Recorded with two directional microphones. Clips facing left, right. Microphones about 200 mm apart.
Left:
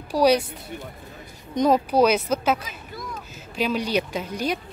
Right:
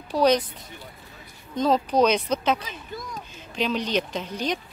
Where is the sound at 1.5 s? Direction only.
15° left (ahead or behind).